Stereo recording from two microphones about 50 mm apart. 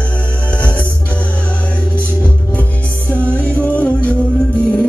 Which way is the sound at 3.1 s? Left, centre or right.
Left.